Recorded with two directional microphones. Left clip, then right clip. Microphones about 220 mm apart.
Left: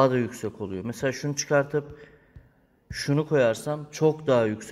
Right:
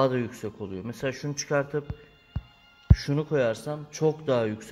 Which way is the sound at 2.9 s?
5° left (ahead or behind).